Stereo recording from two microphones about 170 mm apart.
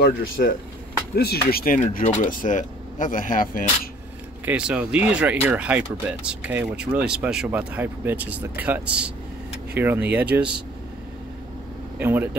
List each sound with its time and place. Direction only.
0.0 s speech: 65° left (ahead or behind)
1.8 s speech: 45° left (ahead or behind)
4.5 s speech: 5° right (ahead or behind)
12.0 s speech: 10° right (ahead or behind)